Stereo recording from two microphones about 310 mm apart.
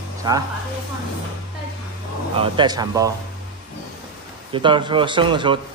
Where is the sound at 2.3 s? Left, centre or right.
Centre.